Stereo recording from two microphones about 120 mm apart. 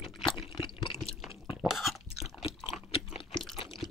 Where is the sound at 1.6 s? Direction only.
Centre (ahead or behind).